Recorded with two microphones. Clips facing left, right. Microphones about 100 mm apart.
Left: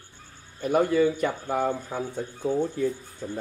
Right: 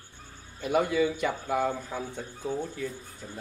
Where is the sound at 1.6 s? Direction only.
20° left (ahead or behind).